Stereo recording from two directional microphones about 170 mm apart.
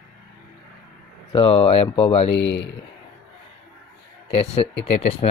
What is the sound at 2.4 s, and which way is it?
Speech, 90° left.